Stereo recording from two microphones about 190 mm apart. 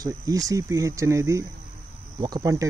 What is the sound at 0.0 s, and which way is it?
Speech, 20° right (ahead or behind).